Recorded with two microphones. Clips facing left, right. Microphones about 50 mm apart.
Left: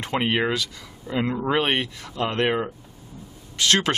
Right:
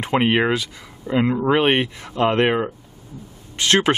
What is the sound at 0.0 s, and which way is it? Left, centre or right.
Speech, centre.